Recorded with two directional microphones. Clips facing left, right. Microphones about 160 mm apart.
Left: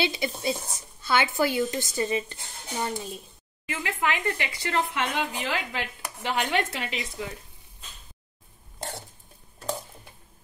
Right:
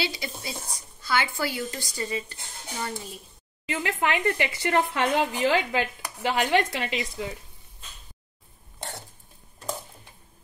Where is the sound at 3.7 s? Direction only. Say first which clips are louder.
Right 2 dB; 20° right (ahead or behind).